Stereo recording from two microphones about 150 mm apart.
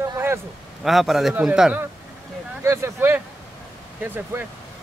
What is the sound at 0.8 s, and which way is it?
A man's voice, centre (ahead or behind).